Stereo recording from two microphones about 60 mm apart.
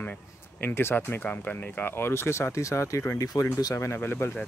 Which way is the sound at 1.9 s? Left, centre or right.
Left.